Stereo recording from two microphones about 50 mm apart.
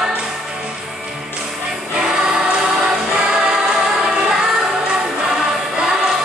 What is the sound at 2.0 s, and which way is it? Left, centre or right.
Choir, centre.